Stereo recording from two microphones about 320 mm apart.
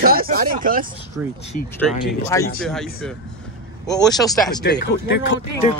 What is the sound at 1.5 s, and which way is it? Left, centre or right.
Speech, left.